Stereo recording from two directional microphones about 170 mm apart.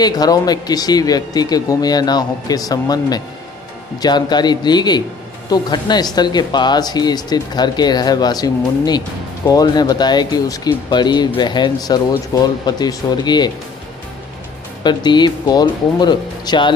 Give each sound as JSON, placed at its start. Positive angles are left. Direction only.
{"t": 0.0, "sound": "speech", "side_deg": 25}
{"t": 14.8, "sound": "speech", "side_deg": 25}